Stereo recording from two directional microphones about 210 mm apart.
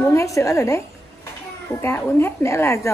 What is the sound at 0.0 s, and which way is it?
A woman's voice, 15° left (ahead or behind).